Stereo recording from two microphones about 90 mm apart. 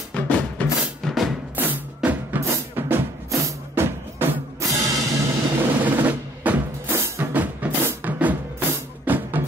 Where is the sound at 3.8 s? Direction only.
25° right (ahead or behind).